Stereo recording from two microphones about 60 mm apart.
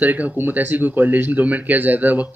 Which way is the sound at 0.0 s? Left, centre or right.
Right.